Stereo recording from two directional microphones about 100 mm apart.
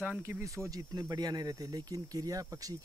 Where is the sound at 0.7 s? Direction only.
40° right (ahead or behind).